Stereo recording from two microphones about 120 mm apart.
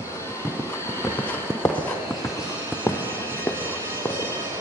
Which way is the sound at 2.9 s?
25° left (ahead or behind).